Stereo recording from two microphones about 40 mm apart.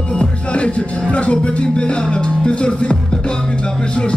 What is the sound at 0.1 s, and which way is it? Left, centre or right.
Music, left.